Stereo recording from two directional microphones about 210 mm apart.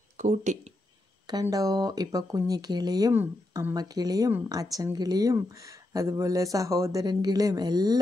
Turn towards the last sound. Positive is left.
turn(degrees=-20)  # may be behind; listen again after turning